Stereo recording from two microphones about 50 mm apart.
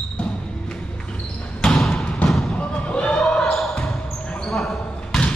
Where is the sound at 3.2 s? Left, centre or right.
Centre.